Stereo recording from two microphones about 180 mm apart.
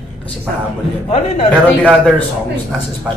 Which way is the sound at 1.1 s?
35° left (ahead or behind).